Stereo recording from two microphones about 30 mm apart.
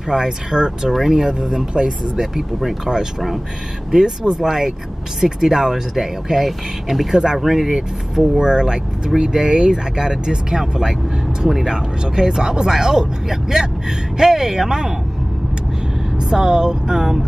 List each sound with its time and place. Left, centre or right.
0.1 s speech: right
1.7 s speech: right
2.3 s speech: centre
8.5 s speech: right
16.2 s speech: right